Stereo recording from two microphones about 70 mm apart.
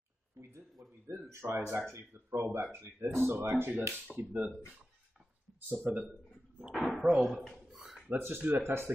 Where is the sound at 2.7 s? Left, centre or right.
Right.